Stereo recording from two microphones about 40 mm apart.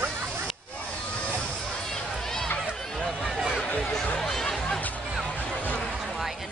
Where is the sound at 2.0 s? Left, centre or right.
Centre.